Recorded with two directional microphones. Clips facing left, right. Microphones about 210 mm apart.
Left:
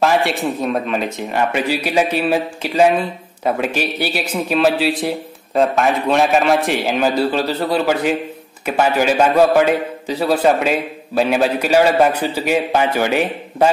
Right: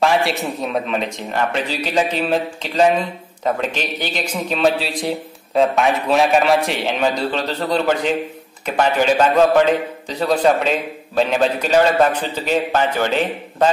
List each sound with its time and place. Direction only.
0.0 s a man's voice: centre (ahead or behind)